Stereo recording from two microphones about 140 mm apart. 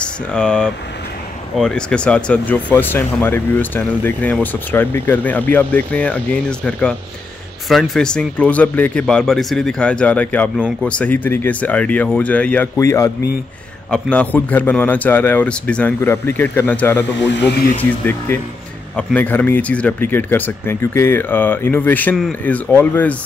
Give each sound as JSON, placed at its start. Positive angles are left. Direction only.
{"t": 0.0, "sound": "speech", "side_deg": 5}
{"t": 12.7, "sound": "speech", "side_deg": 20}
{"t": 13.8, "sound": "speech", "side_deg": 5}